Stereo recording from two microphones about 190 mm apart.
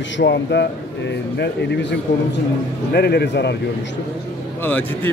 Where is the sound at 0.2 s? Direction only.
65° left (ahead or behind).